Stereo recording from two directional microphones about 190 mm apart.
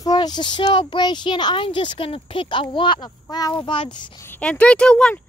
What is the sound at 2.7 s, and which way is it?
Speech, 25° left (ahead or behind).